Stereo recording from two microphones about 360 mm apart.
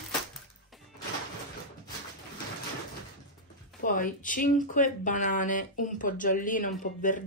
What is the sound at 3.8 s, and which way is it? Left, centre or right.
Speech, left.